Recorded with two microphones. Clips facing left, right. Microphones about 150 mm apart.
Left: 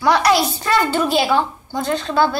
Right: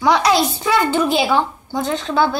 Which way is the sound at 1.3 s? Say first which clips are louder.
Right 1 dB; 15° right (ahead or behind).